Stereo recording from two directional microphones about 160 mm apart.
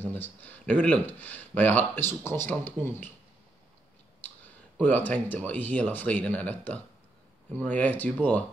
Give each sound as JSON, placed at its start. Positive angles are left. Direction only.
{"t": 0.0, "sound": "speech", "side_deg": 10}
{"t": 4.7, "sound": "speech", "side_deg": 10}